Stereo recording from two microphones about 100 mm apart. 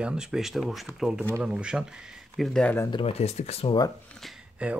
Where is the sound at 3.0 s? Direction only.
90° left.